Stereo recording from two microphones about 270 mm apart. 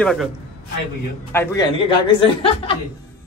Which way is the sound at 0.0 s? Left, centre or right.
Centre.